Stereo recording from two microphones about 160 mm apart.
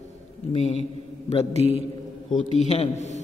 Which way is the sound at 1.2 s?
40° left (ahead or behind).